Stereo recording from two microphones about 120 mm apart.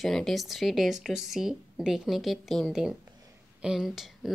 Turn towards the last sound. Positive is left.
turn(degrees=0)  # may be behind; listen again after turning